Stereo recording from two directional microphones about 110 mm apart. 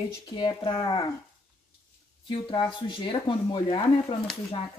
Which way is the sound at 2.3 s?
50° left (ahead or behind).